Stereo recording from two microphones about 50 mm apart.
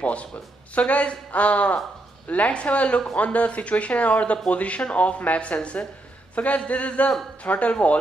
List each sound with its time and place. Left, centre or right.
0.0 s speech: left